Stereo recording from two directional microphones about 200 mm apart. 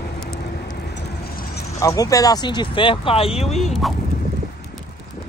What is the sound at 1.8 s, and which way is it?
Speech, 15° left (ahead or behind).